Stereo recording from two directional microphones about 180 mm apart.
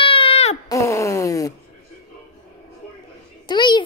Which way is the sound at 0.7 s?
15° left (ahead or behind).